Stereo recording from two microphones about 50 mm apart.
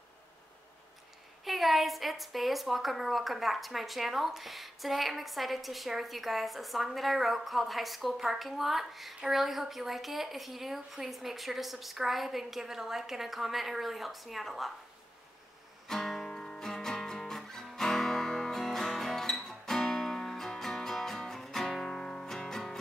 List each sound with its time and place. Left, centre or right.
1.4 s a woman's voice: centre
15.9 s music: centre